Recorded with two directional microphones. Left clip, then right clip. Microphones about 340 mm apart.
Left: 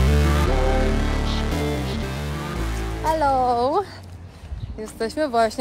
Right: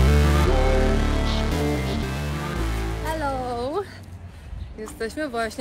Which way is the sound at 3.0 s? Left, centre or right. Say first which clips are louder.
Left 8 dB; centre.